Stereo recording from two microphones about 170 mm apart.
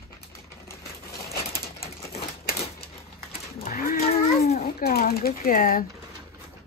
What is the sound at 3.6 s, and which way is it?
Livestock, 55° left (ahead or behind).